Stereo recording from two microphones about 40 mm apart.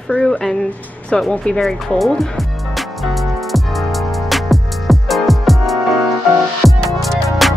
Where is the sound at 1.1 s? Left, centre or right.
Left.